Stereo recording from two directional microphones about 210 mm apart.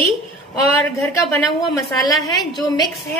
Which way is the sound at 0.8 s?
15° left (ahead or behind).